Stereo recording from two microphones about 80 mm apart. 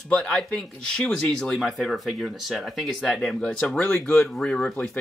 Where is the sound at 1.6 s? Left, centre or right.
Centre.